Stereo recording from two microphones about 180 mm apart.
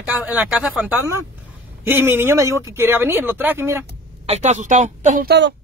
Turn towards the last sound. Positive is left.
turn(degrees=-50)  # may be behind; listen again after turning